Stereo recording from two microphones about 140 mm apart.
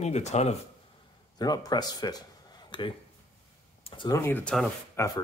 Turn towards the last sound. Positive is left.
turn(degrees=20)  # may be behind; listen again after turning